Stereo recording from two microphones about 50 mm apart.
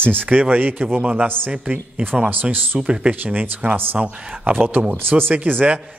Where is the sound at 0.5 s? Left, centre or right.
Right.